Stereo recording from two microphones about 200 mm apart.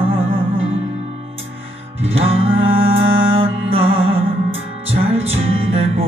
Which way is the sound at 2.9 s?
75° right (ahead or behind).